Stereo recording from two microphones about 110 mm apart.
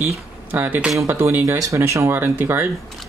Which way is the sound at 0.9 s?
20° right (ahead or behind).